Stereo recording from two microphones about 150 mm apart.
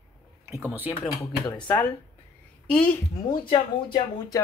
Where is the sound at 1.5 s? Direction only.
10° left (ahead or behind).